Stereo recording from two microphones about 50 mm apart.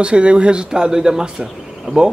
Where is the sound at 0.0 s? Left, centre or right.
Right.